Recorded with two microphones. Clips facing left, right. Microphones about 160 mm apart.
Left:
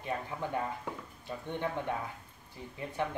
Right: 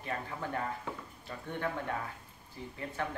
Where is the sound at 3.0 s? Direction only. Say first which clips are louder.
Left 3 dB; 20° left (ahead or behind).